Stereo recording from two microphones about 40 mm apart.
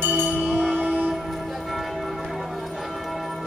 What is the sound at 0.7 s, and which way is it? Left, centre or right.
Church bell, right.